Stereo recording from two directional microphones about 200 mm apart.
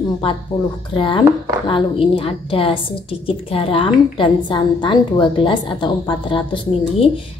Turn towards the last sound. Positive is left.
turn(degrees=25)  # may be behind; listen again after turning